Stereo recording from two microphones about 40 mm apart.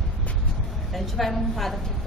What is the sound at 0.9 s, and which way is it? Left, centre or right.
Speech, centre.